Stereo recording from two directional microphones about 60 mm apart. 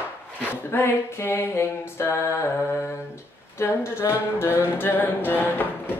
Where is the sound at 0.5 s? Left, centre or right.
Left.